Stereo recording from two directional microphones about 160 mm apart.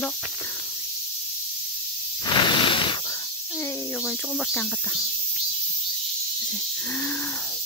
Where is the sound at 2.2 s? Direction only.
25° left (ahead or behind).